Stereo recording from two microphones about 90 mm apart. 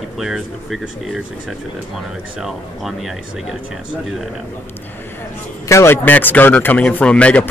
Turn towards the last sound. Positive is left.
turn(degrees=15)  # may be behind; listen again after turning